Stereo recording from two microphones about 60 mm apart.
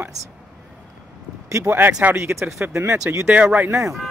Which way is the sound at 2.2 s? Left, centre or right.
Right.